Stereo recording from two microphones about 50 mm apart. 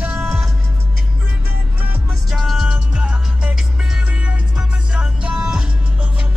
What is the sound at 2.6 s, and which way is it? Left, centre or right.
Music, centre.